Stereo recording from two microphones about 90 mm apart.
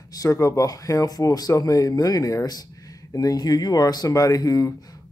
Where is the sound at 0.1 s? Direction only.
40° left (ahead or behind).